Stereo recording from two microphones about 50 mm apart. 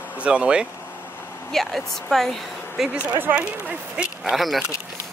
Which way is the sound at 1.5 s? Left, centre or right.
Centre.